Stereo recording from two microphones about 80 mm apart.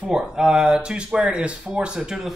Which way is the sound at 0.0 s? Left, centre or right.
Centre.